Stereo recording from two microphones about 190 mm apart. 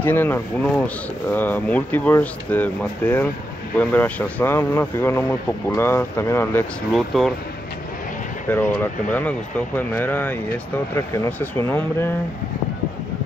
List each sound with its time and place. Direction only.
0.0 s speech: 10° left (ahead or behind)
6.9 s speech: centre (ahead or behind)
8.5 s speech: 10° left (ahead or behind)